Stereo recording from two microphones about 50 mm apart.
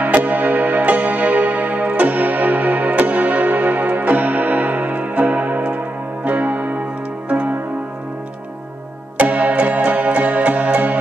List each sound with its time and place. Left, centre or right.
0.0 s music: right
7.2 s music: right
9.2 s music: right